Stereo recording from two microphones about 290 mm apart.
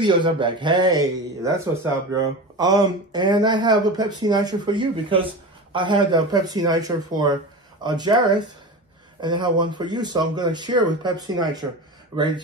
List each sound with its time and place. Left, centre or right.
0.0 s speech: centre